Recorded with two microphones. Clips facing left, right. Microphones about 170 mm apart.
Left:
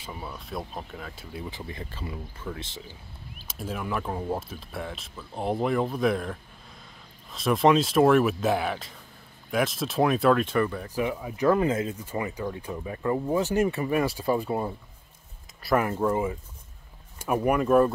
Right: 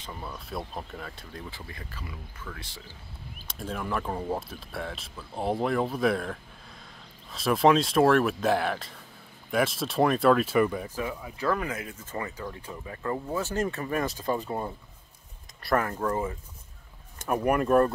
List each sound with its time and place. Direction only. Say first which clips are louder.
0.0 s speech: left 1 dB; 5° left (ahead or behind)
1.5 s speech: left 5 dB; 25° left (ahead or behind)
3.4 s speech: left 1 dB; 5° left (ahead or behind)
11.0 s speech: left 5 dB; 15° left (ahead or behind)
12.0 s speech: left 4 dB; 15° left (ahead or behind)